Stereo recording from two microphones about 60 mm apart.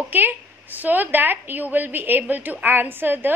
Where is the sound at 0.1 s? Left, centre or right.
Right.